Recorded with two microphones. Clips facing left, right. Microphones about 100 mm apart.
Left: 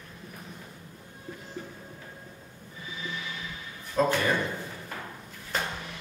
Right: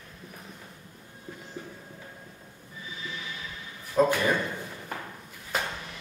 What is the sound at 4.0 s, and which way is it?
Speech, 15° right (ahead or behind).